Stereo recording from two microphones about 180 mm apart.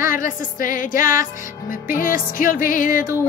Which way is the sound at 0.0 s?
50° left (ahead or behind).